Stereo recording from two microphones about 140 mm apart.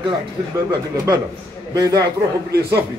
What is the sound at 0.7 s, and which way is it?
A man's voice, 25° right (ahead or behind).